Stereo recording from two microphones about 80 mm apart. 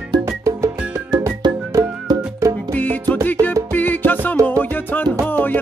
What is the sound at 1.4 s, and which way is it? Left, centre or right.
Music, right.